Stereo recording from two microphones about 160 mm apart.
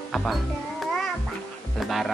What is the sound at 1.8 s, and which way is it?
Speech, centre (ahead or behind).